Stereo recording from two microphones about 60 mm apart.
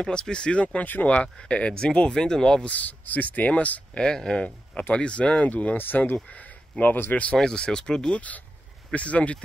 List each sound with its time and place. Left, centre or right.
0.0 s speech: centre
2.7 s speech: left
4.0 s speech: centre
7.3 s speech: centre